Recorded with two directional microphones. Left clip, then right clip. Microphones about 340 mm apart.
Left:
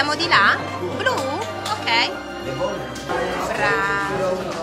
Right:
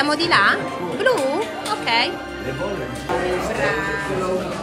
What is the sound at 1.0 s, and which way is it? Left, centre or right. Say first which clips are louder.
Music: right 4 dB; centre.